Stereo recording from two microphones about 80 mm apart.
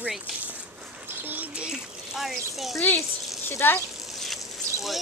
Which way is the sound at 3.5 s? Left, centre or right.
Left.